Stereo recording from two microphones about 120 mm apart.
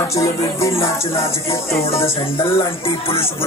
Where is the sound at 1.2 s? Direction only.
55° left (ahead or behind).